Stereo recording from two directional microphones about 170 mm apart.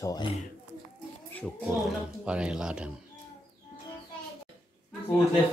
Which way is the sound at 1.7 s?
5° right (ahead or behind).